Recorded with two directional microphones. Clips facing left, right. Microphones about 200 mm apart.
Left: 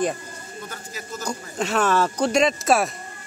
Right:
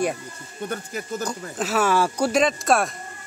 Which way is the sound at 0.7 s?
55° right (ahead or behind).